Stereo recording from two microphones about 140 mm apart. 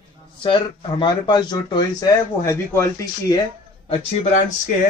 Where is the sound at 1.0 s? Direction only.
35° left (ahead or behind).